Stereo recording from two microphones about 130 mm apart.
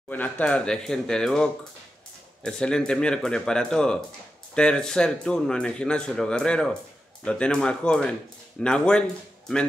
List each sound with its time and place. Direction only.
0.1 s speech: 10° left (ahead or behind)